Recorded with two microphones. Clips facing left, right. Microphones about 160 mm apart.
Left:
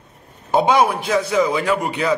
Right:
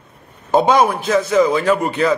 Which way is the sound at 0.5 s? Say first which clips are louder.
Right 2 dB; 15° left (ahead or behind).